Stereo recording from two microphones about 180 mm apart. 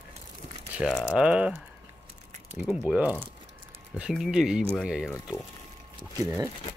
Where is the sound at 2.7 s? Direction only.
5° right (ahead or behind).